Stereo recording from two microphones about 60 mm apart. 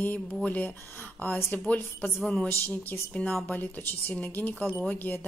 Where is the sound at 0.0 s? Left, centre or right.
Left.